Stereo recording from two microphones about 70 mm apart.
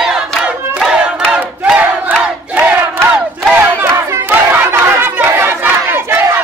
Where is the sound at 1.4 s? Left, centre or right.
Right.